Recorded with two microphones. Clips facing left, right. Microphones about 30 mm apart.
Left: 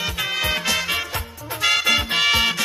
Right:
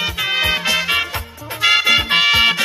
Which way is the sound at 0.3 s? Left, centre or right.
Right.